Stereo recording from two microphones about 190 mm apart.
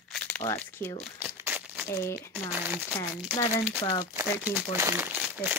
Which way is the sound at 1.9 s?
15° left (ahead or behind).